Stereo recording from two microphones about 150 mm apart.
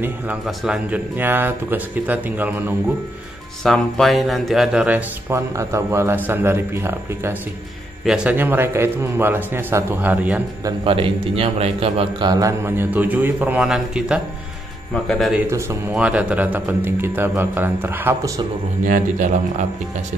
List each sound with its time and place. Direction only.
0.5 s speech: 5° right (ahead or behind)
3.6 s speech: centre (ahead or behind); by 7.3 s 15° right (ahead or behind)
8.0 s speech: 5° right (ahead or behind)
10.8 s a man's voice: 35° right (ahead or behind)
12.3 s a man's voice: 20° right (ahead or behind); by 15.3 s centre (ahead or behind)
15.3 s speech: 20° right (ahead or behind)
18.9 s speech: 60° right (ahead or behind)